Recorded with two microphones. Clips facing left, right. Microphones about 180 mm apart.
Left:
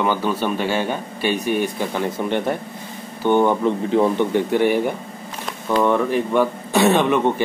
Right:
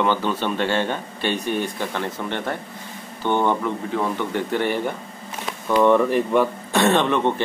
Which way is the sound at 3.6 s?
25° left (ahead or behind).